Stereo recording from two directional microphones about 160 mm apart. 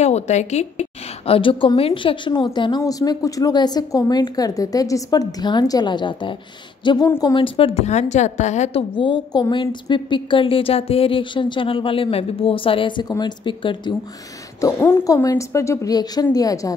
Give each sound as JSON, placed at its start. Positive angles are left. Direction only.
{"t": 0.0, "sound": "a woman's voice", "side_deg": 45}
{"t": 8.9, "sound": "a woman's voice", "side_deg": 30}
{"t": 14.6, "sound": "a woman's voice", "side_deg": 15}